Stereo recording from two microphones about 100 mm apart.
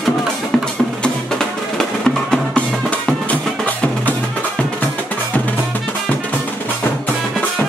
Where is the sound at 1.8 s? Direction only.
10° left (ahead or behind).